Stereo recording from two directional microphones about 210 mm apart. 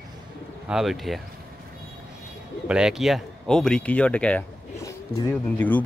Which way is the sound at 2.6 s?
5° right (ahead or behind).